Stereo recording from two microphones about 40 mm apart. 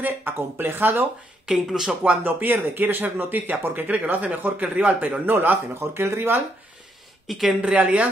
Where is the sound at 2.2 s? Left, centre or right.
Right.